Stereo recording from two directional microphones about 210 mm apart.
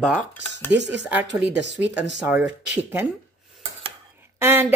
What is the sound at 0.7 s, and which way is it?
Speech, 55° right (ahead or behind).